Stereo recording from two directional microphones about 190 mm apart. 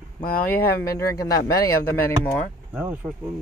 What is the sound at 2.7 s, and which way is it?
Speech, 10° right (ahead or behind).